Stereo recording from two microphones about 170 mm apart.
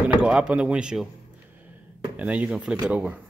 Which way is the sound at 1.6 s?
10° right (ahead or behind).